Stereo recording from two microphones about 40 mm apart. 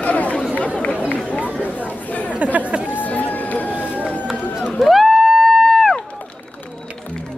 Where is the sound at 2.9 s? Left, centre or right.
Left.